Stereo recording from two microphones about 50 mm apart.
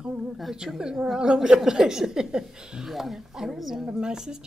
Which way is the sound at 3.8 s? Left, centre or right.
Centre.